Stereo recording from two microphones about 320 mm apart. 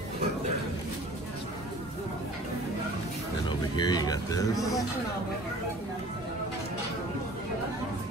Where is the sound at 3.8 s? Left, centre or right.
Centre.